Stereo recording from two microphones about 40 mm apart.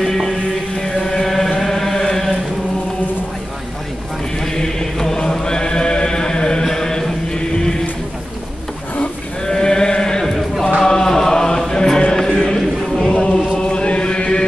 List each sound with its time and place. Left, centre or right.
0.0 s music: centre
0.7 s chant: centre
4.4 s chant: centre
9.5 s sheep: centre
10.8 s chant: centre
13.0 s chant: left